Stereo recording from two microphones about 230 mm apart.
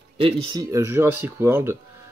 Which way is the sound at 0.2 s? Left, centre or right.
Right.